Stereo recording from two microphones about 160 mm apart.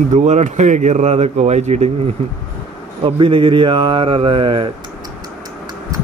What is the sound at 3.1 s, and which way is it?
Chuckle, 35° right (ahead or behind).